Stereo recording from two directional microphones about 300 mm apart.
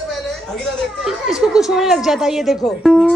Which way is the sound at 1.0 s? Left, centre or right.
Centre.